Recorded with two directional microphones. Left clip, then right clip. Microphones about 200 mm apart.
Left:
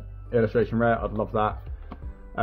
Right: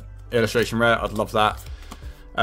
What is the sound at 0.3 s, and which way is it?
Speech, 20° right (ahead or behind).